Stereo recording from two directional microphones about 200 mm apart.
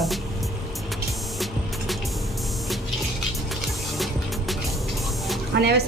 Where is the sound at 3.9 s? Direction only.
Centre (ahead or behind).